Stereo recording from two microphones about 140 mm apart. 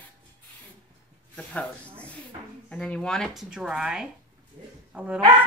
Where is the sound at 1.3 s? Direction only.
10° left (ahead or behind).